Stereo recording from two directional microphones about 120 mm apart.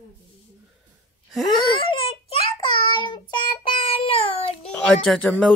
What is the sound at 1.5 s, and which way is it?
Child singing, 50° left (ahead or behind).